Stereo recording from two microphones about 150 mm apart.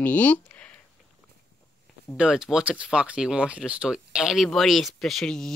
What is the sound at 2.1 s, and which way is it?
Speech, 5° right (ahead or behind).